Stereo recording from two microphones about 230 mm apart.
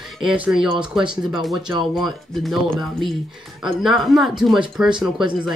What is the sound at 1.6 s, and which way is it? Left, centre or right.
Speech, centre.